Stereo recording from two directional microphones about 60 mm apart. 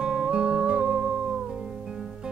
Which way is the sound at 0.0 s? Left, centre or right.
Centre.